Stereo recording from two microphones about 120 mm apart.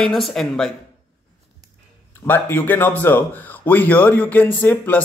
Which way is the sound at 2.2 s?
20° left (ahead or behind).